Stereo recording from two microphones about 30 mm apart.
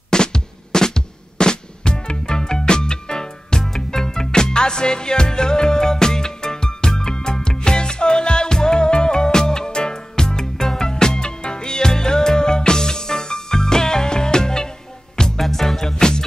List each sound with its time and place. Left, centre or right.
0.1 s music: left
15.3 s music: centre
16.0 s music: left